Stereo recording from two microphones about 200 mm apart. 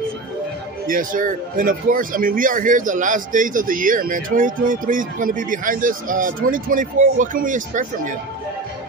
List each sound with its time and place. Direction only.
0.8 s speech: 45° right (ahead or behind)